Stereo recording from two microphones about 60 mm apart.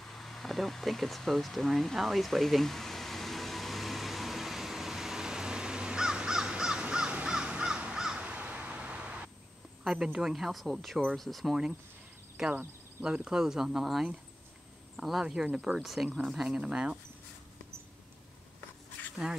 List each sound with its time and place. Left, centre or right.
0.1 s vehicle: centre
7.2 s crow: centre
9.8 s speech: centre
12.4 s speech: centre
19.0 s a sound: left